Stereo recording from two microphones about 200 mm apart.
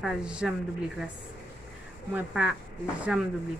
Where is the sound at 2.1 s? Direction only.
5° right (ahead or behind).